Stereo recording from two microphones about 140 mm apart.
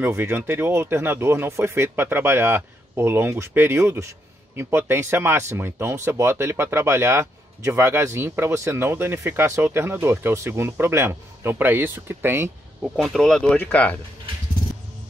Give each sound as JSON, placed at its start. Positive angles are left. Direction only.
{"t": 0.0, "sound": "speech", "side_deg": -15}
{"t": 12.9, "sound": "speech", "side_deg": 0}